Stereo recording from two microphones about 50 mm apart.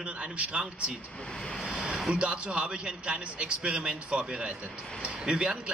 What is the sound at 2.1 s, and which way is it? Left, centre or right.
A man's voice, right.